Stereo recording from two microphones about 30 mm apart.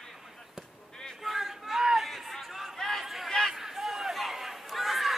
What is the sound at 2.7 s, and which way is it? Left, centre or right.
Chatter, centre.